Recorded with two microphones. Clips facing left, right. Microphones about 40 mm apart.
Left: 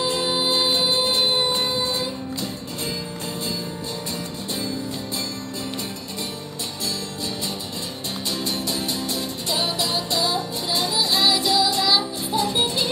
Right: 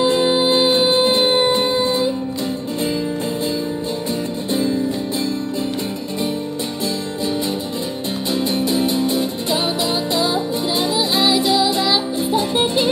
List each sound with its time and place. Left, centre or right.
0.0 s music: right
8.3 s music: right